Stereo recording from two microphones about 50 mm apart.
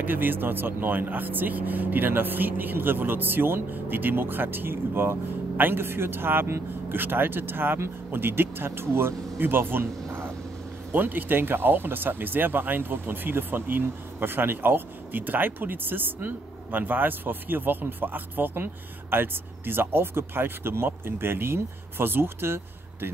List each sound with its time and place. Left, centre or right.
0.0 s speech: right